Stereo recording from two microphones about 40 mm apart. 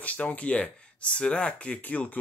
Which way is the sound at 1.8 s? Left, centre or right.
Left.